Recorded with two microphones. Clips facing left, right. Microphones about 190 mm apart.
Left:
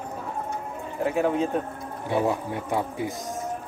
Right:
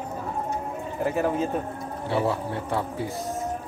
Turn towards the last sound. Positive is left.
turn(degrees=15)  # may be behind; listen again after turning